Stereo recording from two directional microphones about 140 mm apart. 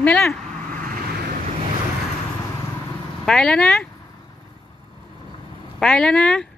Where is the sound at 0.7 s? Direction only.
85° right.